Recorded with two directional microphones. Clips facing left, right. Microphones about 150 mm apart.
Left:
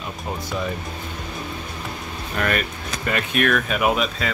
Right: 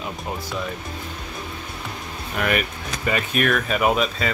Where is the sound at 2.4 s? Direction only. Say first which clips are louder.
Right 1 dB; 10° right (ahead or behind).